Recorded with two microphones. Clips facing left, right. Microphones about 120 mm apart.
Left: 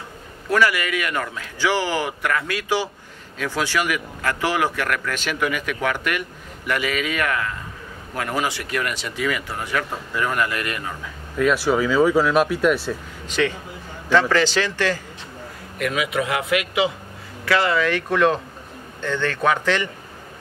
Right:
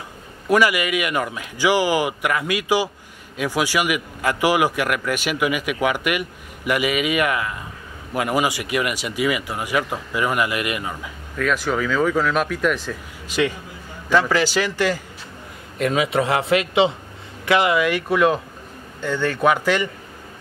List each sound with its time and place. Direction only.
0.5 s a man's voice: 15° right (ahead or behind)
11.3 s speech: 5° left (ahead or behind)
13.3 s a man's voice: 10° right (ahead or behind)
15.8 s a man's voice: 30° right (ahead or behind)
17.5 s a man's voice: 15° right (ahead or behind)